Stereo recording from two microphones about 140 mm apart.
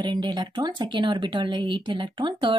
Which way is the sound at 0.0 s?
30° right (ahead or behind).